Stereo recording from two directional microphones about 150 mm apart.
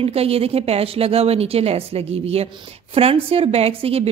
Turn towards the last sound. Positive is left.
turn(degrees=-40)  # may be behind; listen again after turning